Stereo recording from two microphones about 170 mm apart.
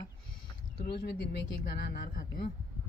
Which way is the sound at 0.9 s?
70° left (ahead or behind).